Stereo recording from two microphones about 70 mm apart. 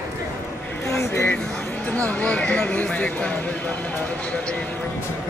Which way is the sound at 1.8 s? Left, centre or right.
Centre.